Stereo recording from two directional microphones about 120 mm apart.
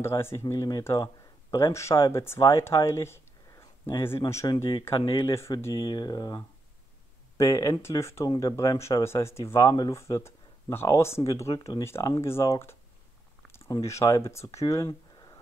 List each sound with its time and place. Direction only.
0.0 s speech: 20° left (ahead or behind)
4.5 s speech: 45° left (ahead or behind); by 14.9 s 25° left (ahead or behind)